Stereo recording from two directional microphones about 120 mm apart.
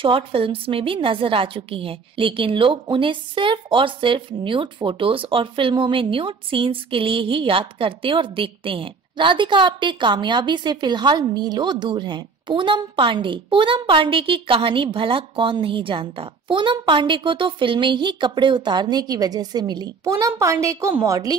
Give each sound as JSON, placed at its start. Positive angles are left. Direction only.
{"t": 0.0, "sound": "a woman's voice", "side_deg": -50}